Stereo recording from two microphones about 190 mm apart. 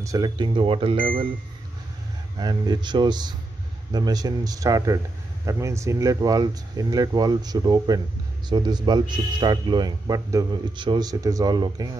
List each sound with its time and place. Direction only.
0.0 s a man's voice: 20° right (ahead or behind)
2.3 s a man's voice: 20° right (ahead or behind)